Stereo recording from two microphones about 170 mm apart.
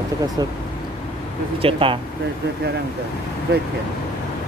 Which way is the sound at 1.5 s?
30° right (ahead or behind).